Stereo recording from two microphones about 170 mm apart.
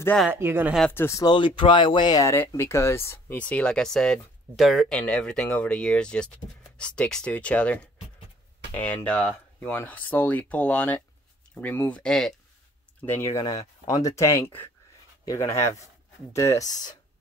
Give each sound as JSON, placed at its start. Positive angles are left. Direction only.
{"t": 0.3, "sound": "speech", "side_deg": -15}
{"t": 0.7, "sound": "speech", "side_deg": 10}
{"t": 13.0, "sound": "speech", "side_deg": 15}